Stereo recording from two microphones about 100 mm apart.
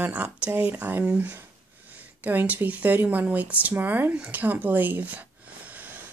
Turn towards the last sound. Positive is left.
turn(degrees=-15)  # may be behind; listen again after turning